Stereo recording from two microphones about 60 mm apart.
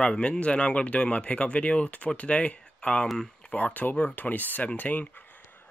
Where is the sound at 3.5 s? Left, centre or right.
Left.